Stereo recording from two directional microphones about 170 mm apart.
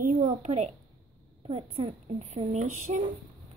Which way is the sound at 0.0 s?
50° right (ahead or behind).